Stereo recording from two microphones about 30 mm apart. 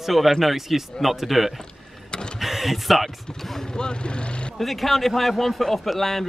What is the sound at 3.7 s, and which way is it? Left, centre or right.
Speech, left.